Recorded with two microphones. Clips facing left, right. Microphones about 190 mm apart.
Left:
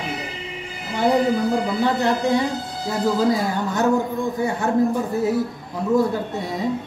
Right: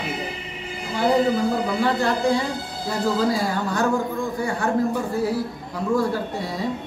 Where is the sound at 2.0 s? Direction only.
20° left (ahead or behind).